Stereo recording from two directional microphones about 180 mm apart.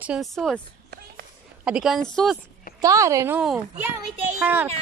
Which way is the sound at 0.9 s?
65° right (ahead or behind).